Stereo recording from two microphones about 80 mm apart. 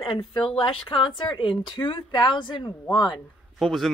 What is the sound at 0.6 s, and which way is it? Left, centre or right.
Speech, left.